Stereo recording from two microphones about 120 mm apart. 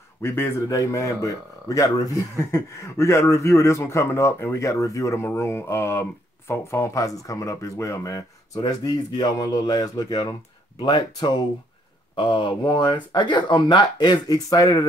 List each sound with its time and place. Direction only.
0.2 s speech: 20° left (ahead or behind)